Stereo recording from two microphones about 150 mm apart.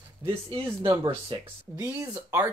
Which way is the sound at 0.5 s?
35° right (ahead or behind).